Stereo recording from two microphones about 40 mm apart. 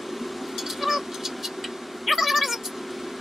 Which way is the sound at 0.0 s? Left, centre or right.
Centre.